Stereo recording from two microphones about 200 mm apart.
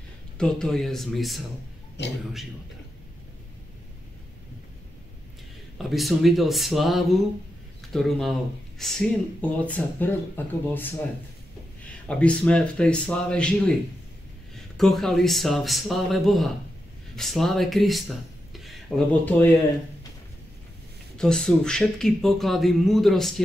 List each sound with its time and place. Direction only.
0.4 s speech: 5° left (ahead or behind)
2.0 s a man's voice: 60° left (ahead or behind)
5.8 s speech: centre (ahead or behind)
12.1 s speech: 5° left (ahead or behind)
14.8 s speech: centre (ahead or behind)
21.2 s speech: 5° left (ahead or behind)